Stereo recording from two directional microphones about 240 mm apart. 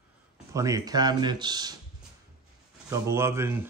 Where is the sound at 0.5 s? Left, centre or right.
Centre.